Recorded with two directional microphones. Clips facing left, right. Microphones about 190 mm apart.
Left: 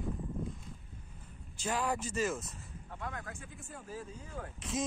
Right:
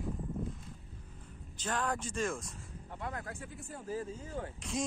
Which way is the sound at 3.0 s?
30° right (ahead or behind).